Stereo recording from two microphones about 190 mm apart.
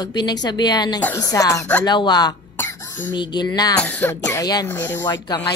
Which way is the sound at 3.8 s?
10° left (ahead or behind).